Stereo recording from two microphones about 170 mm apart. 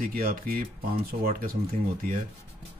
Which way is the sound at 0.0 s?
60° right (ahead or behind).